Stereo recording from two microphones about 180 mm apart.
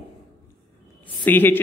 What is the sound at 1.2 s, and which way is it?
Speech, 10° left (ahead or behind).